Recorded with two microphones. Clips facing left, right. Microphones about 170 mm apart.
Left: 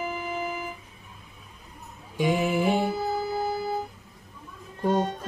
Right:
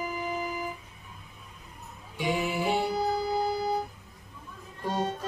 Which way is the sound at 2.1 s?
45° left (ahead or behind).